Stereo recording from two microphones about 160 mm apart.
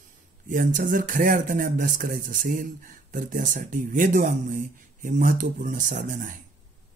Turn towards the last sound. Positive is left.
turn(degrees=-55)  # may be behind; listen again after turning